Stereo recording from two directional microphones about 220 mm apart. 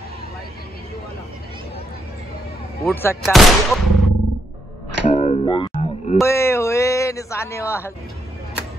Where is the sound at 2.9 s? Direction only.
10° left (ahead or behind).